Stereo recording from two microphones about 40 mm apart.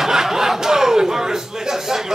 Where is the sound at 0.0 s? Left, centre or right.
Centre.